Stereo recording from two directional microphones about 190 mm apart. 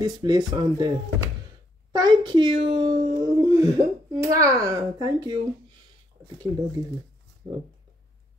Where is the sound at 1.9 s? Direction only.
20° right (ahead or behind).